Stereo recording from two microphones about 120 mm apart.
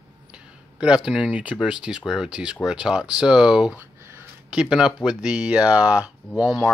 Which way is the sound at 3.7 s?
20° right (ahead or behind).